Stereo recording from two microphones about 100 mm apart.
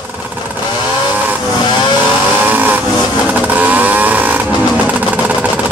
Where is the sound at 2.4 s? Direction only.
15° right (ahead or behind).